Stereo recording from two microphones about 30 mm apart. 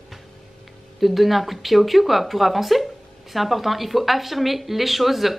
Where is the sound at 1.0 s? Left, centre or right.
Centre.